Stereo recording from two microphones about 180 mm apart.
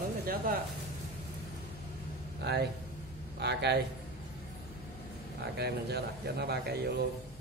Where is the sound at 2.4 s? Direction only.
65° right (ahead or behind).